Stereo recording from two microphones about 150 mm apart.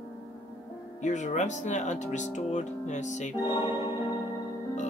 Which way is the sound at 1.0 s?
50° left (ahead or behind).